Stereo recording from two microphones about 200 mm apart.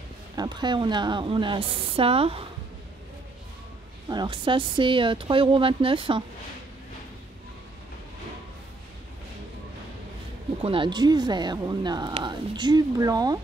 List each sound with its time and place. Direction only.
0.4 s speech: 20° right (ahead or behind)
4.1 s speech: 25° right (ahead or behind)
10.6 s speech: 25° right (ahead or behind)